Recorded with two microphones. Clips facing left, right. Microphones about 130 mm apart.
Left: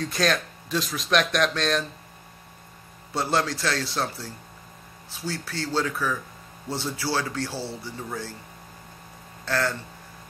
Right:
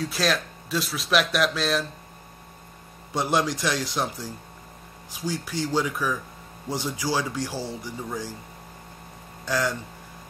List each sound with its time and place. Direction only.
0.0 s speech: 5° right (ahead or behind)
3.2 s speech: 15° right (ahead or behind)
9.4 s speech: 15° right (ahead or behind)